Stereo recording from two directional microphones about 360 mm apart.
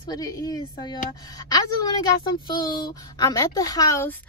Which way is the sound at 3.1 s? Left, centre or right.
Centre.